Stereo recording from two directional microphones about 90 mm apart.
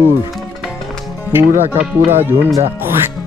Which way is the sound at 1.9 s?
25° right (ahead or behind).